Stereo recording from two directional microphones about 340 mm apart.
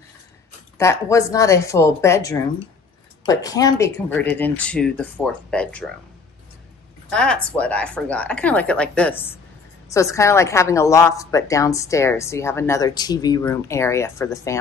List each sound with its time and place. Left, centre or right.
0.7 s a woman's voice: centre
7.1 s a woman's voice: centre